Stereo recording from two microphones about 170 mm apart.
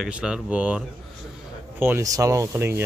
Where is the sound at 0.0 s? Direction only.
5° right (ahead or behind).